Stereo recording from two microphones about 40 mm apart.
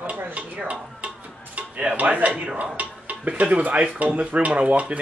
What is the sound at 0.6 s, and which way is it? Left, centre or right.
Stir, right.